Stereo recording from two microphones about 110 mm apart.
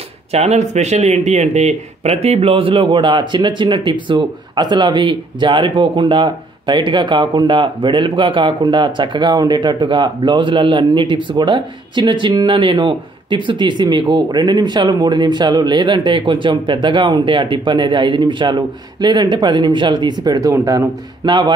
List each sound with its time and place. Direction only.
0.3 s speech: 80° right; by 21.4 s 35° right (ahead or behind)